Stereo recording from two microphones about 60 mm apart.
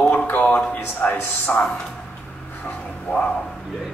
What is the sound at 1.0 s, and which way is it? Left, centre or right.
Speech, left.